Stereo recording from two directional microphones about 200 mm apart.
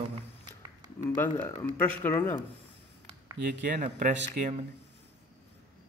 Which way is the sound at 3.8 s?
35° right (ahead or behind).